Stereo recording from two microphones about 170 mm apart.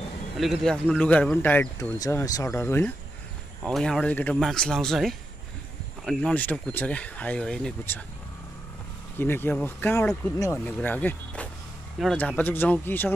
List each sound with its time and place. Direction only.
0.4 s speech: centre (ahead or behind)
3.6 s speech: centre (ahead or behind)
9.2 s speech: 10° left (ahead or behind)